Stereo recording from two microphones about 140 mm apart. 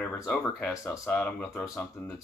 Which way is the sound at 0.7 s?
20° left (ahead or behind).